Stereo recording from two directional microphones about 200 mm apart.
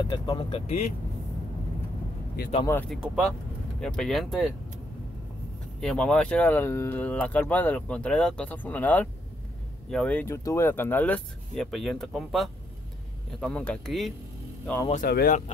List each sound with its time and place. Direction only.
0.0 s speech: 20° left (ahead or behind)
2.6 s speech: 10° left (ahead or behind)
2.9 s speech: centre (ahead or behind)
5.8 s speech: 5° left (ahead or behind)
15.0 s speech: 45° left (ahead or behind)